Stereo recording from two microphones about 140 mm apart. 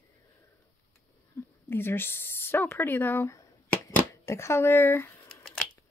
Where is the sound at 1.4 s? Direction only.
15° left (ahead or behind).